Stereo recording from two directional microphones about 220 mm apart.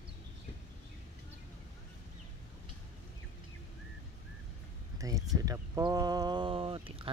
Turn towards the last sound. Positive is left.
turn(degrees=-25)  # may be behind; listen again after turning